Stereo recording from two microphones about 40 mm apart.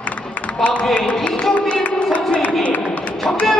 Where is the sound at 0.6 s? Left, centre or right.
Left.